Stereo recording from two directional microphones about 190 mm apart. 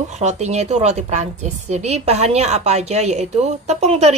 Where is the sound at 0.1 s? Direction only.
35° right (ahead or behind).